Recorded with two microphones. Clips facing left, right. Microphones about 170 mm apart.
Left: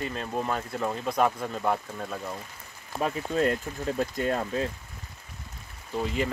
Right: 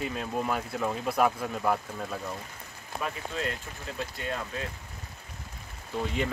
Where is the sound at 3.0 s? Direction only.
45° left (ahead or behind).